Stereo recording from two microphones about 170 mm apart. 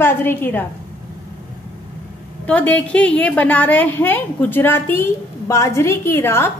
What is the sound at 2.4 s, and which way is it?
A woman's voice, 10° left (ahead or behind).